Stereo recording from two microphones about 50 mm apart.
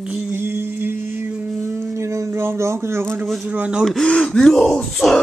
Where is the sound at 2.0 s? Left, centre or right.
Right.